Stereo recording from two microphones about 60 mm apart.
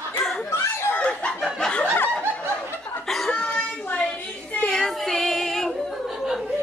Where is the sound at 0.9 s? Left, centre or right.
Centre.